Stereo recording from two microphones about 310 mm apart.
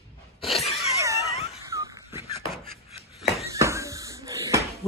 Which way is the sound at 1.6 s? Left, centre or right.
Centre.